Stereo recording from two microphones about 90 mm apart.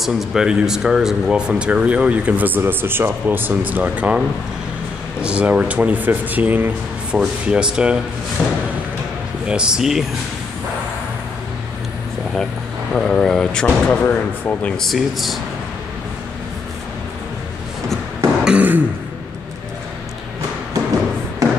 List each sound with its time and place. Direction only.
0.0 s speech: 5° right (ahead or behind)
5.2 s speech: 10° right (ahead or behind)
7.2 s speech: 10° right (ahead or behind)
12.9 s speech: 5° left (ahead or behind)
14.8 s speech: centre (ahead or behind)
18.4 s throat clearing: 15° right (ahead or behind)